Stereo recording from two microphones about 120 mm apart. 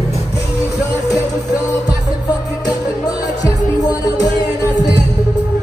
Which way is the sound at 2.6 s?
35° left (ahead or behind).